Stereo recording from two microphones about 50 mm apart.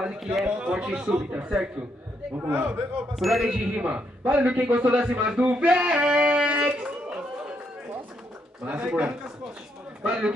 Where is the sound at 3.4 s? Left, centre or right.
Right.